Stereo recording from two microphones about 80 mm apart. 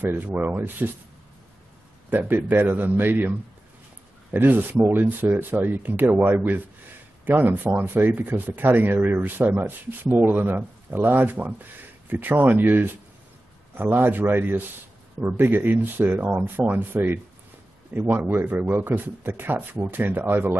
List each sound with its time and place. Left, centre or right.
0.0 s speech: right
2.0 s speech: right